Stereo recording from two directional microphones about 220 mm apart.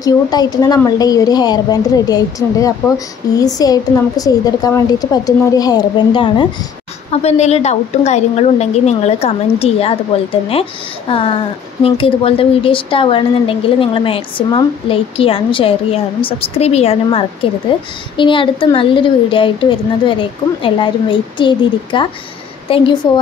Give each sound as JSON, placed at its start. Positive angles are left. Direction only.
{"t": 0.0, "sound": "a woman's voice", "side_deg": 20}